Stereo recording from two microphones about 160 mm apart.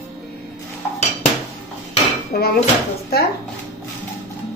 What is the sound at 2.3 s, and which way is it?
Speech, 75° left (ahead or behind).